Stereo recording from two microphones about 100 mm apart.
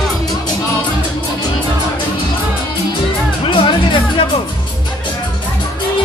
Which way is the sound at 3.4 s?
60° left (ahead or behind).